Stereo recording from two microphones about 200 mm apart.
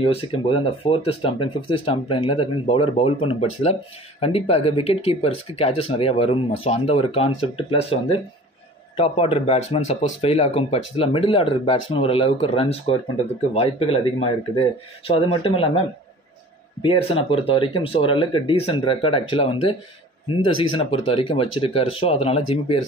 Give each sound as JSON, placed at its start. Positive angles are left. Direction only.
{"t": 0.0, "sound": "speech", "side_deg": 25}
{"t": 16.8, "sound": "speech", "side_deg": 25}